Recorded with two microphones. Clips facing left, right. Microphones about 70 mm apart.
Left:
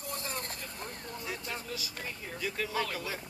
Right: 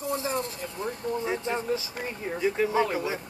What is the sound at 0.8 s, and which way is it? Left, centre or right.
Speech, right.